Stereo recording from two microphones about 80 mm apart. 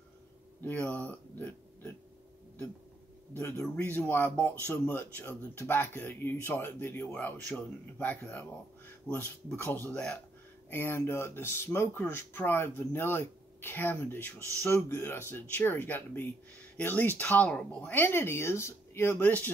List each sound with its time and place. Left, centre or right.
0.6 s speech: left
3.3 s a man's voice: left
10.7 s speech: left